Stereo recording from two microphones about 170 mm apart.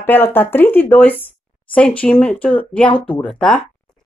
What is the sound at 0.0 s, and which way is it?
Speech, 10° left (ahead or behind).